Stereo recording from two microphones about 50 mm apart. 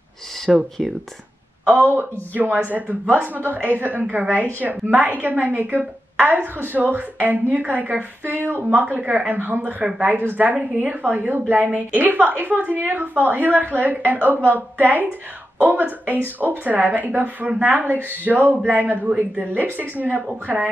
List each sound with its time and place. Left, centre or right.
0.5 s speech: centre
1.7 s a woman's voice: right
16.3 s a woman's voice: right
19.0 s a woman's voice: right